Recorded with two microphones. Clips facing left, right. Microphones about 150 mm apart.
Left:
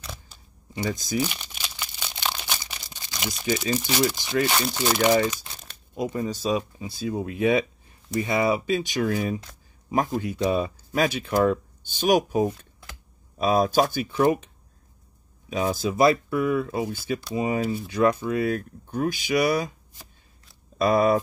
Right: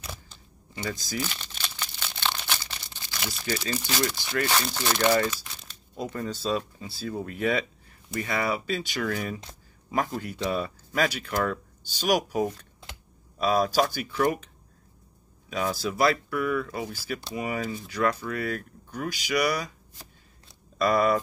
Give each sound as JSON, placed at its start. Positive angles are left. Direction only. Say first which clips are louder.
{"t": 0.8, "sound": "speech", "louder": "left 5 dB", "side_deg": 20}
{"t": 15.5, "sound": "speech", "louder": "left 4 dB", "side_deg": 20}
{"t": 20.7, "sound": "speech", "louder": "left 3 dB", "side_deg": 25}